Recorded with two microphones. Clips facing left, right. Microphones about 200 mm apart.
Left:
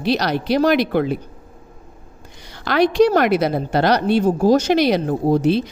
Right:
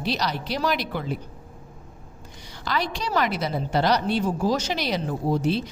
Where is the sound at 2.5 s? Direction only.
70° left (ahead or behind).